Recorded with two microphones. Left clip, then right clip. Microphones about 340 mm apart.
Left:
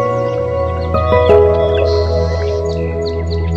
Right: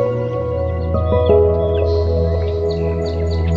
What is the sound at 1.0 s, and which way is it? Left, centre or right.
Music, left.